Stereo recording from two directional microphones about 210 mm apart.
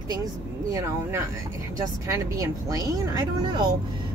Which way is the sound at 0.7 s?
15° right (ahead or behind).